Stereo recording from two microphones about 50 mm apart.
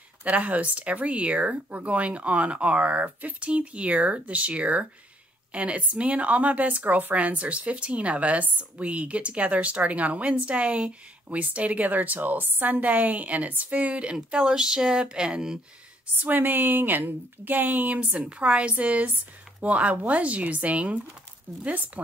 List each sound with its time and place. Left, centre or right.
0.2 s speech: right; by 15.6 s centre
16.2 s a woman's voice: right